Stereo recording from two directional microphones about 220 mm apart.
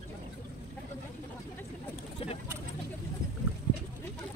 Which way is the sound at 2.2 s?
25° left (ahead or behind).